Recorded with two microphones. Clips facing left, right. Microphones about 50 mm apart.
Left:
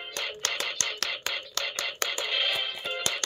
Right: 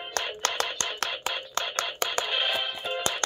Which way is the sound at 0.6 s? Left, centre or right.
Centre.